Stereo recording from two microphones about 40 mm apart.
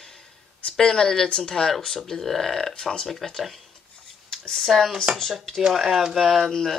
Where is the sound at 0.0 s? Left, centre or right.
Centre.